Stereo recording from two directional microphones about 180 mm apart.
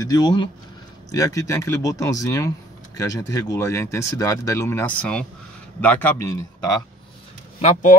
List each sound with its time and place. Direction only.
0.0 s speech: 20° left (ahead or behind)
7.6 s speech: 45° left (ahead or behind)